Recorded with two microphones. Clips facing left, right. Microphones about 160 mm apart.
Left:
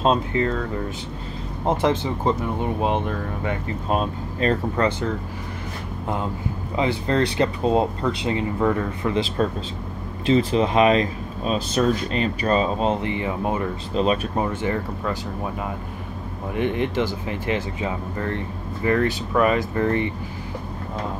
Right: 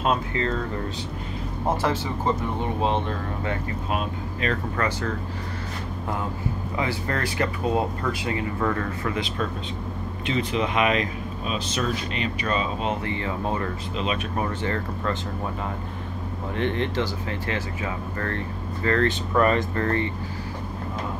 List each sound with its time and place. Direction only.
0.0 s speech: 25° left (ahead or behind)
1.8 s speech: 20° left (ahead or behind)
3.9 s speech: 35° left (ahead or behind)
6.8 s speech: 25° left (ahead or behind)
13.0 s speech: 15° left (ahead or behind)
13.9 s speech: 40° left (ahead or behind)
14.3 s speech: 20° left (ahead or behind)
16.5 s speech: 15° left (ahead or behind)